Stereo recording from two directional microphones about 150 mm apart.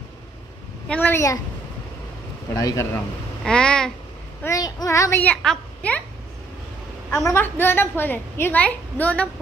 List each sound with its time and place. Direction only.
0.8 s a woman's voice: 10° left (ahead or behind)
2.5 s speech: 20° left (ahead or behind)
3.4 s a sound: 5° left (ahead or behind)
4.4 s a child's voice: 20° left (ahead or behind)
7.2 s a woman's voice: 15° left (ahead or behind)